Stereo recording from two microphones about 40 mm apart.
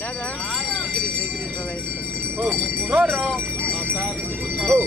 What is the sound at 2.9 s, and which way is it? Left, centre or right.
Jingle bell, right.